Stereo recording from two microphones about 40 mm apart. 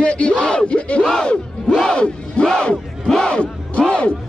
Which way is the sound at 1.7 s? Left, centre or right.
Centre.